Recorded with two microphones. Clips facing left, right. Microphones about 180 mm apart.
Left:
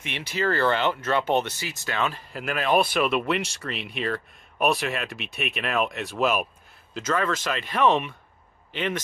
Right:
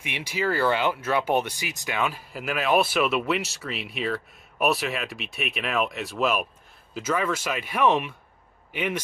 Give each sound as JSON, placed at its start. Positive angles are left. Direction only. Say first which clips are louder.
{"t": 0.0, "sound": "speech", "louder": "left 1 dB", "side_deg": -10}